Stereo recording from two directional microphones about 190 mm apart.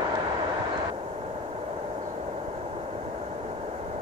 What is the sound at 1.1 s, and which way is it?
Vehicle, 30° right (ahead or behind).